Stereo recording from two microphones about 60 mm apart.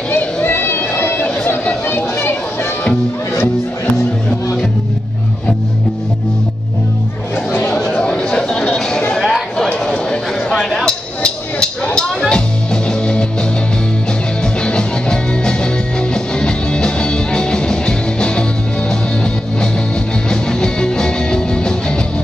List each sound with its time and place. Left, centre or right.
0.1 s a sound: left
7.6 s chatter: centre
9.1 s a sound: centre
10.7 s music: centre
14.6 s music: centre
20.2 s music: centre